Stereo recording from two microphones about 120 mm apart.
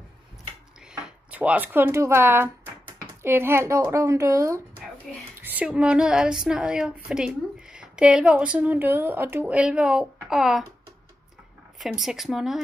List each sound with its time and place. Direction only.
1.3 s a woman's voice: 15° right (ahead or behind)
5.4 s a woman's voice: 15° right (ahead or behind)
11.8 s speech: centre (ahead or behind)